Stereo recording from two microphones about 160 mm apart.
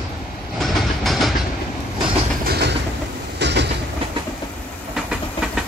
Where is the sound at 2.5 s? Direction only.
90° right.